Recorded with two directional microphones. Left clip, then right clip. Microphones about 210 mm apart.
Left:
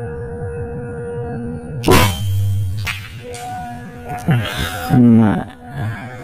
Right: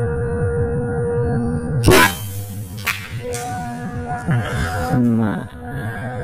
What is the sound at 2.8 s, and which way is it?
Music, 45° right (ahead or behind).